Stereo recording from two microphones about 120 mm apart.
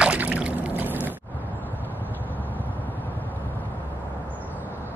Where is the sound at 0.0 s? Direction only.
10° right (ahead or behind).